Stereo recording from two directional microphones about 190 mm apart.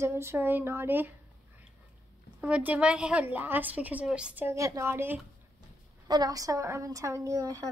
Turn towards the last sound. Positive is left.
turn(degrees=-20)  # may be behind; listen again after turning